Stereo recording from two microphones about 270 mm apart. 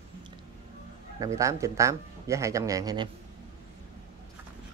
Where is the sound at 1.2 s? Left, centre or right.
Centre.